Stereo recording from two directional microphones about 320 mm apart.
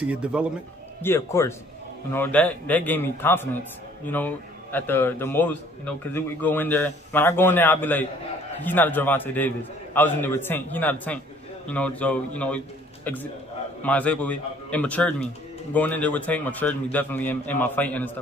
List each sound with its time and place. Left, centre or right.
0.0 s a man's voice: centre
1.0 s a man's voice: centre